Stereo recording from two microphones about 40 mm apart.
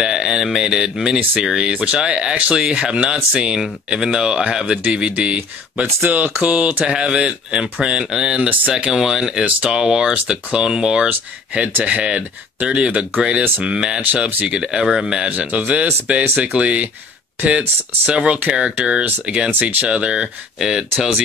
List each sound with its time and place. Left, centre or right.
0.0 s speech: centre
1.6 s speech: right
6.0 s speech: right
6.4 s speech: right; by 9.4 s centre
9.6 s speech: centre
11.1 s speech: right
13.7 s speech: right
15.2 s speech: right
20.5 s speech: centre